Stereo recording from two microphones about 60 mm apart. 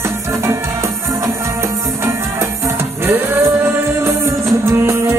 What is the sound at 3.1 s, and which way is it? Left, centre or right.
Speech, right.